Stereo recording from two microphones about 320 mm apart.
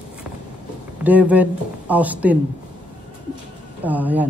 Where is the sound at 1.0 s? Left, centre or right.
Centre.